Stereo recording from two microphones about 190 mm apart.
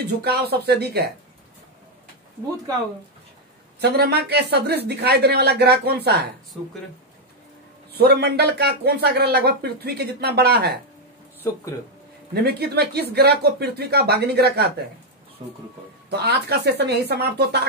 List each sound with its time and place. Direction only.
0.0 s speech: 60° right (ahead or behind)
3.8 s speech: 60° right (ahead or behind)
7.9 s speech: 55° right (ahead or behind)
12.4 s speech: 60° right (ahead or behind)
16.1 s speech: 60° right (ahead or behind)